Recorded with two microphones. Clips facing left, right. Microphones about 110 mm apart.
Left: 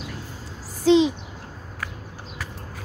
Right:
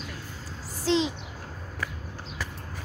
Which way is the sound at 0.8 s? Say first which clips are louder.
Left 8 dB; 15° left (ahead or behind).